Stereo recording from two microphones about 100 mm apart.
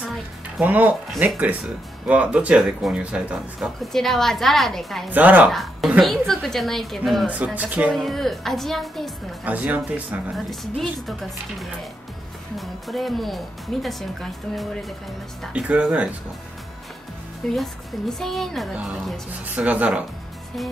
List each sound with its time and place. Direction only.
0.6 s speech: 15° right (ahead or behind); by 5.0 s 5° left (ahead or behind)
5.1 s speech: 15° right (ahead or behind)
5.5 s speech: centre (ahead or behind)
7.2 s speech: 15° right (ahead or behind)
7.9 s speech: centre (ahead or behind)
9.4 s speech: 15° right (ahead or behind)
10.3 s speech: centre (ahead or behind)
12.5 s speech: centre (ahead or behind)
15.5 s speech: 10° right (ahead or behind)
17.6 s speech: centre (ahead or behind)
19.4 s speech: 15° right (ahead or behind)